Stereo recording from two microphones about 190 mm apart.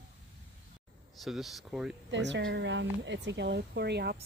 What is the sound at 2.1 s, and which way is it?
Speech, 70° right (ahead or behind).